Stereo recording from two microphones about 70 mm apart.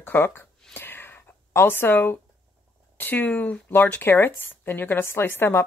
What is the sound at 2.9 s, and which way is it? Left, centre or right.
Speech, left.